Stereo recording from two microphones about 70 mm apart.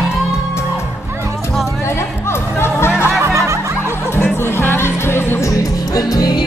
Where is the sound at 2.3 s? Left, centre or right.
Left.